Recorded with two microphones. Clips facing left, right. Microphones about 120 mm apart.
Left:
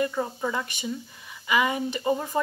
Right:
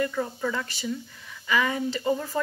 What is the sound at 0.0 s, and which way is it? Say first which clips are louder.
Speech: even; 25° left (ahead or behind).